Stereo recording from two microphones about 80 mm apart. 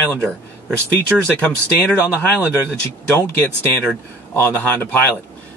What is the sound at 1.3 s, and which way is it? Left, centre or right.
Speech, centre.